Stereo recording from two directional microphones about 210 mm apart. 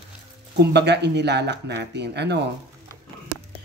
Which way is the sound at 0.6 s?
55° right (ahead or behind).